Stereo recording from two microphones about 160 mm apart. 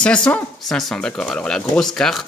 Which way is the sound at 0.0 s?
5° left (ahead or behind).